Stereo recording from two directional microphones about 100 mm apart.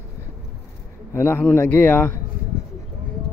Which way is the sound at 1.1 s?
20° left (ahead or behind).